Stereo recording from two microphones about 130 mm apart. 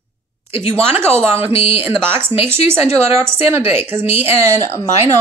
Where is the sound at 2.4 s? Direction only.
20° right (ahead or behind).